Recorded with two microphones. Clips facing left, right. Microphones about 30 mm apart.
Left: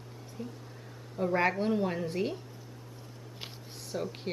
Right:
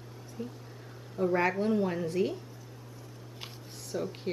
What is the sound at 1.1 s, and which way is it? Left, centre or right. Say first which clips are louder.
A woman's voice: right 1 dB; centre.